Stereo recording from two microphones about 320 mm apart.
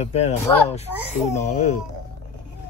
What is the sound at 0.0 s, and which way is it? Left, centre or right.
Speech, centre.